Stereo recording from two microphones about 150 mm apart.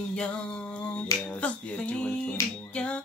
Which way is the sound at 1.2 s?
10° left (ahead or behind).